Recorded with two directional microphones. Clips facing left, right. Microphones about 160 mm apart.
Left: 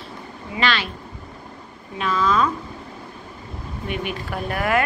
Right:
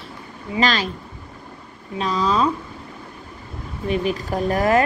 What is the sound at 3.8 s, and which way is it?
Speech, 35° right (ahead or behind).